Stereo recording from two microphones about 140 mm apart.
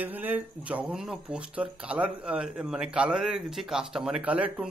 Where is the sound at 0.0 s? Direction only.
15° right (ahead or behind).